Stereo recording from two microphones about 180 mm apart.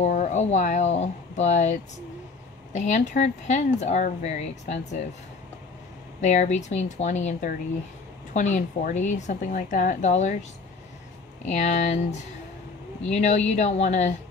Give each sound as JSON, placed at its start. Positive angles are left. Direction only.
{"t": 0.0, "sound": "speech", "side_deg": 40}
{"t": 6.2, "sound": "speech", "side_deg": 40}
{"t": 11.4, "sound": "speech", "side_deg": 40}
{"t": 13.0, "sound": "speech", "side_deg": 40}